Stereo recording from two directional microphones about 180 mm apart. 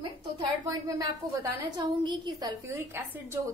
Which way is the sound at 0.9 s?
20° right (ahead or behind).